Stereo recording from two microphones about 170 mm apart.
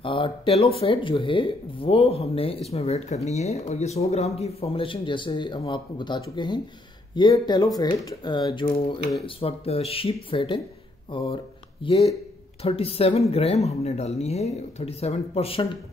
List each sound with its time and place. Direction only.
0.0 s speech: 30° left (ahead or behind)